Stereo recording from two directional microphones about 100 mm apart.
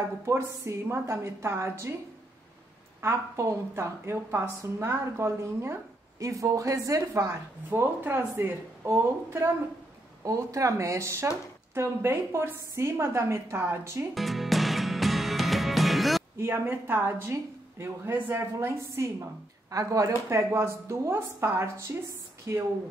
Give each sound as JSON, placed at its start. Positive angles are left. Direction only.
{"t": 0.2, "sound": "a woman's voice", "side_deg": -25}
{"t": 3.0, "sound": "a woman's voice", "side_deg": -25}
{"t": 14.1, "sound": "music", "side_deg": 0}
{"t": 16.3, "sound": "a woman's voice", "side_deg": -20}